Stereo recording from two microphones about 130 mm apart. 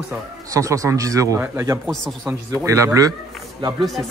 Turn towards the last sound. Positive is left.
turn(degrees=-35)  # may be behind; listen again after turning